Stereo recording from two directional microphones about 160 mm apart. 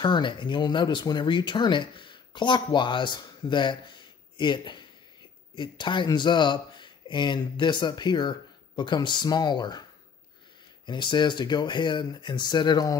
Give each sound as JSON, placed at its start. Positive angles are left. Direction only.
{"t": 0.0, "sound": "speech", "side_deg": 30}
{"t": 10.9, "sound": "speech", "side_deg": 30}